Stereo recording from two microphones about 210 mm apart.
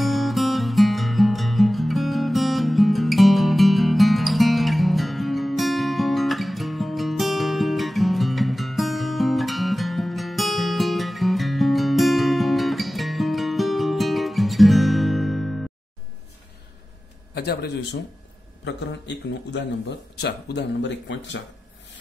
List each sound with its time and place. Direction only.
0.0 s music: centre (ahead or behind)
17.3 s a man's voice: 50° left (ahead or behind)